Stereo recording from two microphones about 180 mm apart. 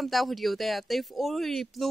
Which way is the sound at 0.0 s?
Centre (ahead or behind).